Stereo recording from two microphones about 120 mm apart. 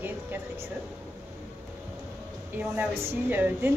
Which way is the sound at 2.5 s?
15° right (ahead or behind).